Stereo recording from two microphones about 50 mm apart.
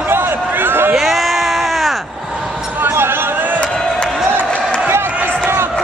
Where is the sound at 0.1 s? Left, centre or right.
Right.